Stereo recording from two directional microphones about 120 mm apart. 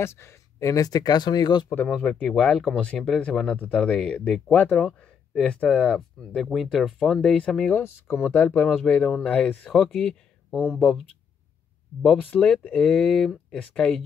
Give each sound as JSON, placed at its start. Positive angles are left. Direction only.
{"t": 0.0, "sound": "speech", "side_deg": 20}
{"t": 1.9, "sound": "speech", "side_deg": 5}
{"t": 12.2, "sound": "speech", "side_deg": 10}